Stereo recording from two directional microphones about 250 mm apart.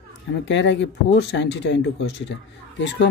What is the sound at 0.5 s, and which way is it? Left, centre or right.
Speech, left.